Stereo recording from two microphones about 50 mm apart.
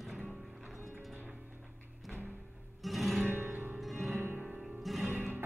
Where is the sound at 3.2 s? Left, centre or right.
Right.